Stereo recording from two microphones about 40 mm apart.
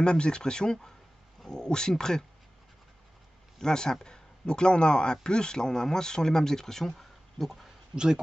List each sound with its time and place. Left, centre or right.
0.0 s speech: left
3.5 s speech: centre
6.9 s a sound: centre
7.9 s speech: centre